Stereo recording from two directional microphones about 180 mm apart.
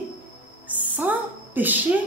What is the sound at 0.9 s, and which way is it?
A woman's voice, 10° right (ahead or behind).